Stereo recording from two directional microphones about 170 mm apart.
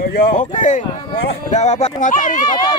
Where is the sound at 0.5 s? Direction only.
50° left (ahead or behind).